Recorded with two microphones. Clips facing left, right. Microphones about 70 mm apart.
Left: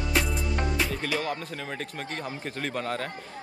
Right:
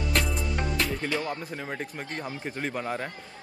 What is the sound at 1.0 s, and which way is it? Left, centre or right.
Speech, right.